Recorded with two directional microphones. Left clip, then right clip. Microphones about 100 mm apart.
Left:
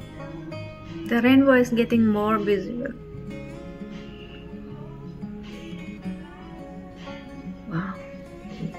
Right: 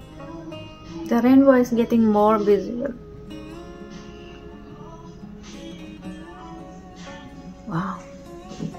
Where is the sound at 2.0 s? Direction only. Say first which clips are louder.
Right 5 dB; 30° left (ahead or behind).